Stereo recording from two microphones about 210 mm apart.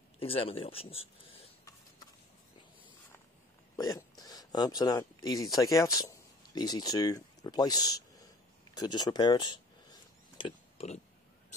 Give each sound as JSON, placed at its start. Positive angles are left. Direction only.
{"t": 0.2, "sound": "speech", "side_deg": 25}
{"t": 3.7, "sound": "burping", "side_deg": 20}
{"t": 4.2, "sound": "speech", "side_deg": 20}
{"t": 10.3, "sound": "oink", "side_deg": 25}